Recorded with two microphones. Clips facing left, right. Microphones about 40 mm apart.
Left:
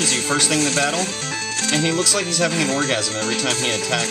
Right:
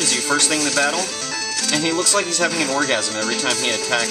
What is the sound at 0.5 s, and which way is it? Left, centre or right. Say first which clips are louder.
Speech: even; left.